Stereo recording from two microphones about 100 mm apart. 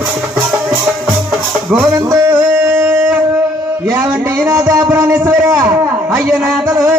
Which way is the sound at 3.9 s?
25° right (ahead or behind).